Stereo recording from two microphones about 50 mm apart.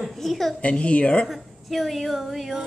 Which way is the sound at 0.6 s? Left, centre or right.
Left.